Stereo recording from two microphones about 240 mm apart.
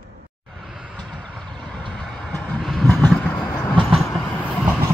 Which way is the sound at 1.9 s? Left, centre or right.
Centre.